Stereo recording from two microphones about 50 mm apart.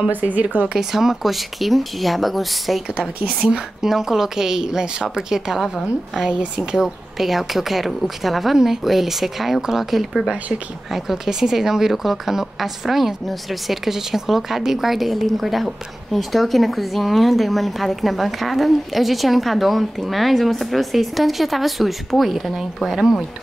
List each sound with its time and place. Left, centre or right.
0.1 s speech: right
0.7 s a woman's voice: centre
3.3 s a woman's voice: centre